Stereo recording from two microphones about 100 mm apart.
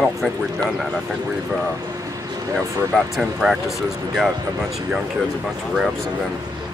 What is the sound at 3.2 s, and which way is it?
Speech, 5° right (ahead or behind).